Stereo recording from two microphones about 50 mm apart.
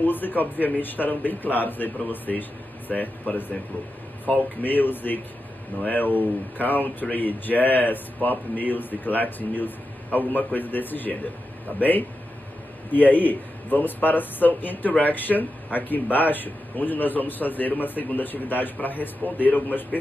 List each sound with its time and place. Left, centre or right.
0.0 s a man's voice: left
12.9 s a man's voice: left